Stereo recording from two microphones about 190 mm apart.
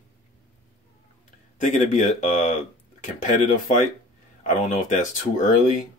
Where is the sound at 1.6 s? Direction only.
40° left (ahead or behind).